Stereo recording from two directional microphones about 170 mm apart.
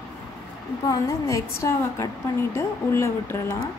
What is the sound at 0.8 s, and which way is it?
A woman's voice, 20° left (ahead or behind).